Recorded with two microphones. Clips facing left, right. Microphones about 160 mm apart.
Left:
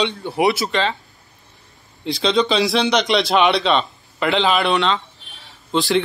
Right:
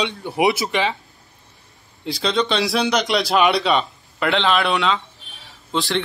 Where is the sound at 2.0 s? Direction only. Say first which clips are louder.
Left 3 dB; centre (ahead or behind).